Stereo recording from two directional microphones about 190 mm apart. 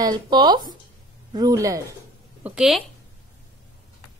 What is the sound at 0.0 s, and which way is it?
A woman's voice, 20° right (ahead or behind).